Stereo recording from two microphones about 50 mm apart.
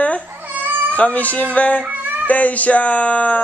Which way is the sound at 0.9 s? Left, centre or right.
Left.